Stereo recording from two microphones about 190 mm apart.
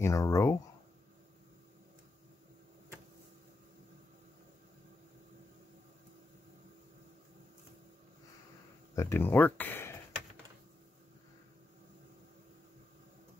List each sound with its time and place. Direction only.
0.0 s speech: 15° left (ahead or behind)
8.9 s speech: 15° left (ahead or behind)